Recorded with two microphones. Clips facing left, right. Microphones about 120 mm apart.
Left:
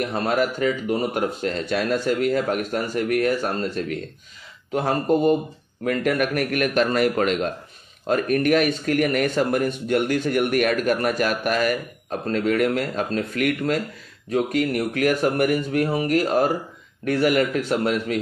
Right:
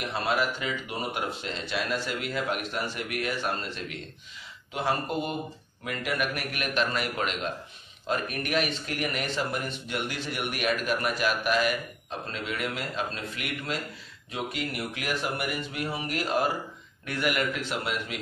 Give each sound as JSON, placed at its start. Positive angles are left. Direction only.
{"t": 0.1, "sound": "speech", "side_deg": 45}